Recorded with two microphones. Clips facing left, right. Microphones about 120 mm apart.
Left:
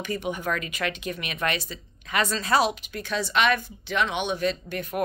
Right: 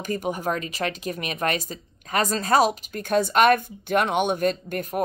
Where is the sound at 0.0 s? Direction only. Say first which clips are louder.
Right 3 dB; 40° right (ahead or behind).